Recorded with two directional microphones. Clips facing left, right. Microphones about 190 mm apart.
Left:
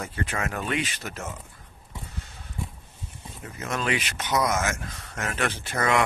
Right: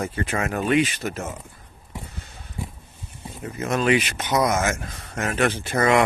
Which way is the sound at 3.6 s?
20° right (ahead or behind).